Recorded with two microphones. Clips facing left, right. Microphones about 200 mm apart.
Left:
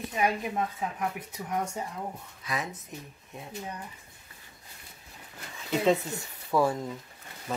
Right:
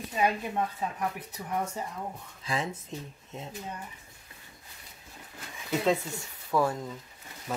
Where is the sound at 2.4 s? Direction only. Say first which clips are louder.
Right 2 dB; 30° right (ahead or behind).